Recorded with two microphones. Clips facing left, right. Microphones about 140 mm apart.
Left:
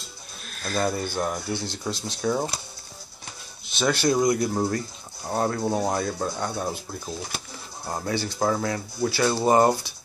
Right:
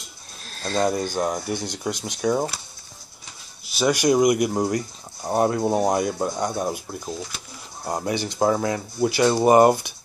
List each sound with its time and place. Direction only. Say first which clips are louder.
0.5 s speech: right 4 dB; 30° right (ahead or behind)
3.6 s speech: right 3 dB; 10° right (ahead or behind)